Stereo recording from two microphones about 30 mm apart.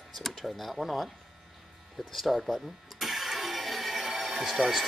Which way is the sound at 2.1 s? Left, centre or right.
Centre.